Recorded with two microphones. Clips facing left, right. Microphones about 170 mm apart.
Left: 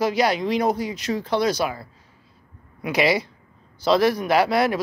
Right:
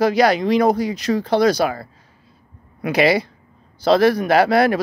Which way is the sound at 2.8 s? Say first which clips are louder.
Right 4 dB; 55° right (ahead or behind).